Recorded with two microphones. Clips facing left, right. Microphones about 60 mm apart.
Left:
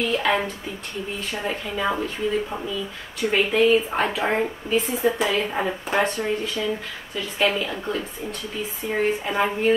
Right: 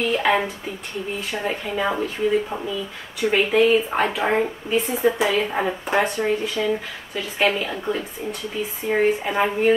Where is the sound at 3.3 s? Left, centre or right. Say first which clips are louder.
Right 1 dB; centre; by 6.3 s right.